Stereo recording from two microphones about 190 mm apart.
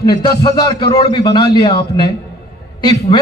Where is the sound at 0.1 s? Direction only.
20° left (ahead or behind).